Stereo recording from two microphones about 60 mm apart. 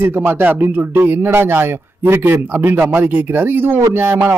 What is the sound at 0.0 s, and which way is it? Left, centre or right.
A man's voice, right.